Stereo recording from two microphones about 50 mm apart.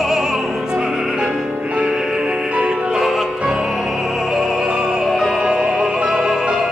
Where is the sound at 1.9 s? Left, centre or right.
Centre.